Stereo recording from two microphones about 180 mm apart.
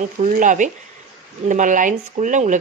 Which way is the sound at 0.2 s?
45° right (ahead or behind).